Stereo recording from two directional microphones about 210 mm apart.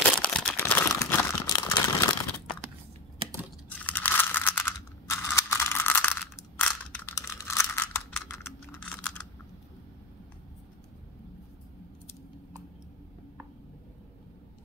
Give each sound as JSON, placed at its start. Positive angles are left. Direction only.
{"t": 0.2, "sound": "crumpling", "side_deg": 5}
{"t": 3.2, "sound": "computer keyboard", "side_deg": -25}
{"t": 3.6, "sound": "a sound", "side_deg": 10}